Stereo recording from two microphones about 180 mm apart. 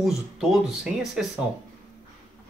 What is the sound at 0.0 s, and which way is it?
Speech, centre (ahead or behind).